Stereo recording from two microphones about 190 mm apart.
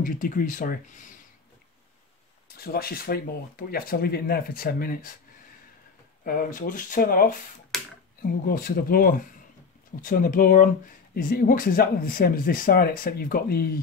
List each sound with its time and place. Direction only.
0.0 s speech: 45° left (ahead or behind)
2.5 s speech: 55° left (ahead or behind)
6.2 s speech: 45° left (ahead or behind)
8.5 s speech: 50° left (ahead or behind)